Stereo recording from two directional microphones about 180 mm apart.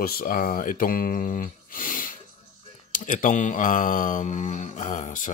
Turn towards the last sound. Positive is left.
turn(degrees=45)  # may be behind; listen again after turning